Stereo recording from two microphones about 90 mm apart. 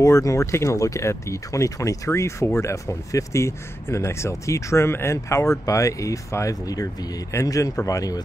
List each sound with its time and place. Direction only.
0.0 s speech: 35° left (ahead or behind)